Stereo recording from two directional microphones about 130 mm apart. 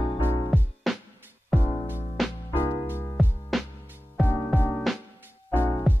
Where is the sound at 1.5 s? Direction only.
15° left (ahead or behind).